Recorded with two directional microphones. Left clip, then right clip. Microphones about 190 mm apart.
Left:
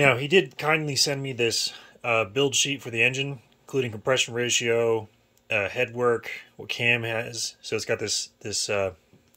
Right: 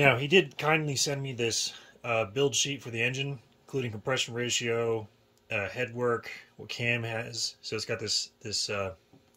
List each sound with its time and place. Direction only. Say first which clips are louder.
0.0 s speech: left 3 dB; centre (ahead or behind)